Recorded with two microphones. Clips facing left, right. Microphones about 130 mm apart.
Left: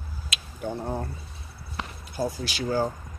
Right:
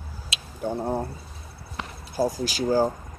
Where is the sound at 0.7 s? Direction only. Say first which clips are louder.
Right 5 dB; 30° right (ahead or behind).